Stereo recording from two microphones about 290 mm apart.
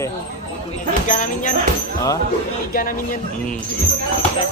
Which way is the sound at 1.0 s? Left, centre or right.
Left.